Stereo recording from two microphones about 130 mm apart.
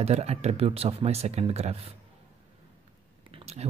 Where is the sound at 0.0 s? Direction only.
55° right (ahead or behind).